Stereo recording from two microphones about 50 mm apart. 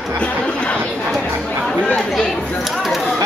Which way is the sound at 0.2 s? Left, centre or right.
Left.